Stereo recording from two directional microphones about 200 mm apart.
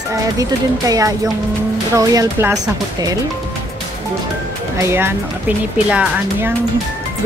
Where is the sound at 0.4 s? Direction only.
15° right (ahead or behind).